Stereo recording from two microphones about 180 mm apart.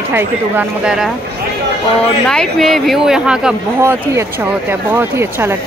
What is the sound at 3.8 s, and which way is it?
Speech, 15° right (ahead or behind).